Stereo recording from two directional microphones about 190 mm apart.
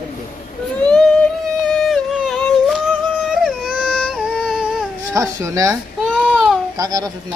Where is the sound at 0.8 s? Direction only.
5° left (ahead or behind).